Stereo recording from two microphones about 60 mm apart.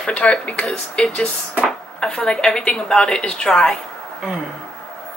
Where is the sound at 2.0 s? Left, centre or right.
Centre.